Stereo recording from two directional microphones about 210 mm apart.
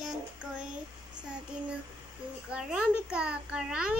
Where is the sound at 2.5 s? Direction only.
5° right (ahead or behind).